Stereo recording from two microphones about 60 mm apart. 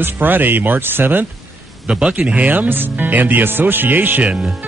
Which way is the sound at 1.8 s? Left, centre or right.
Centre.